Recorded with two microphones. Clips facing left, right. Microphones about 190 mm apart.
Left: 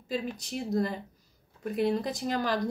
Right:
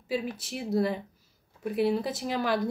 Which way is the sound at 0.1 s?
5° right (ahead or behind).